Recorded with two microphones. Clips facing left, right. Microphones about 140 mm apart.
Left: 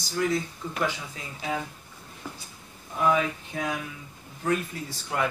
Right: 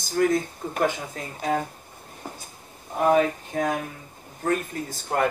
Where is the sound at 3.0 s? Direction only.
50° right (ahead or behind).